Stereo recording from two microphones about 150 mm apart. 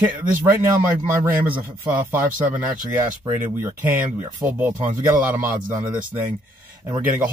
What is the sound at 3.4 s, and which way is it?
Speech, 10° right (ahead or behind).